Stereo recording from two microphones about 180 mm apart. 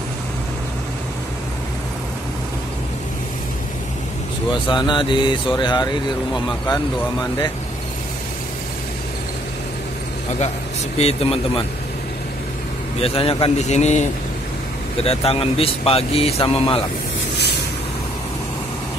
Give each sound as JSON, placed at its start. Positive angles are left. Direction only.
{"t": 4.6, "sound": "speech", "side_deg": 25}
{"t": 11.0, "sound": "speech", "side_deg": 35}
{"t": 13.0, "sound": "speech", "side_deg": 30}
{"t": 15.0, "sound": "speech", "side_deg": 30}